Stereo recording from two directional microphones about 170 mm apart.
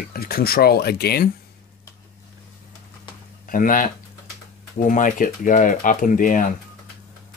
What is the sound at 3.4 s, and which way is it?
Speech, 55° left (ahead or behind).